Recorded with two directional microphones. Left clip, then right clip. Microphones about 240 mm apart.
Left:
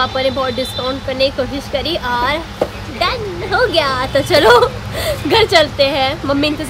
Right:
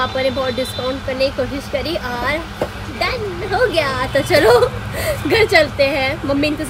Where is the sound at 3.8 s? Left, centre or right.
Centre.